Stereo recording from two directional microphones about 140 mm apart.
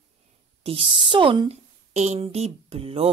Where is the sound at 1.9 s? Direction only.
55° right (ahead or behind).